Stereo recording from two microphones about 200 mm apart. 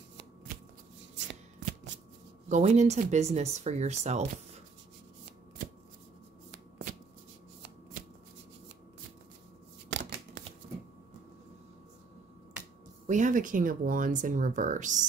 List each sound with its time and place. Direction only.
2.5 s speech: 35° right (ahead or behind)
9.8 s shuffling cards: 60° right (ahead or behind)
13.0 s speech: 40° right (ahead or behind)